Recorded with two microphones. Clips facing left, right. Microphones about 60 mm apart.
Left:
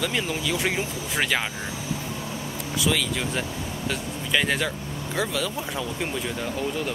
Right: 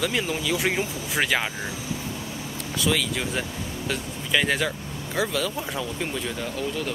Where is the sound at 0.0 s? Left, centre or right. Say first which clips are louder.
Right 1 dB; centre.